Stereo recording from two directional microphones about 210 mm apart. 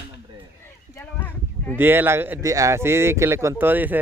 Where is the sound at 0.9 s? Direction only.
10° left (ahead or behind).